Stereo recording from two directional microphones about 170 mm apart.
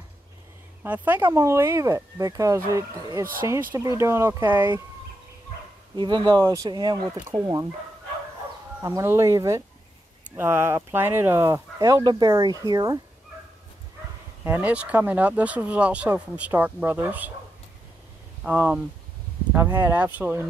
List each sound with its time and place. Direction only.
0.8 s speech: 10° right (ahead or behind)
5.9 s speech: 25° right (ahead or behind)
8.8 s speech: 15° right (ahead or behind)
14.4 s speech: 10° right (ahead or behind)
18.4 s speech: 10° right (ahead or behind)